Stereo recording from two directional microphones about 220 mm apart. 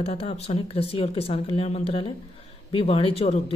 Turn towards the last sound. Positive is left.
turn(degrees=30)  # may be behind; listen again after turning